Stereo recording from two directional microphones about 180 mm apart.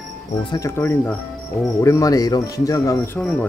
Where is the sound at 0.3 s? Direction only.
25° left (ahead or behind).